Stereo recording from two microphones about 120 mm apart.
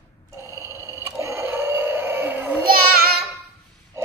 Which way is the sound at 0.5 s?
25° right (ahead or behind).